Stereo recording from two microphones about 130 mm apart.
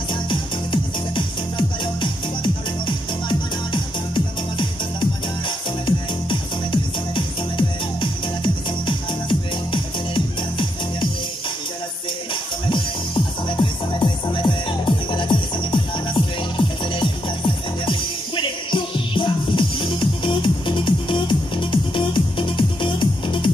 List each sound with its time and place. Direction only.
0.1 s music: 40° left (ahead or behind)
5.9 s music: 40° left (ahead or behind)
12.6 s music: 40° left (ahead or behind)